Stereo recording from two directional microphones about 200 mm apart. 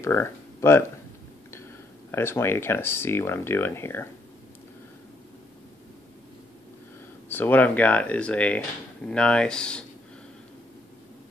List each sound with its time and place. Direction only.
0.0 s speech: 15° left (ahead or behind)
2.0 s speech: 10° left (ahead or behind)
7.2 s speech: 10° left (ahead or behind)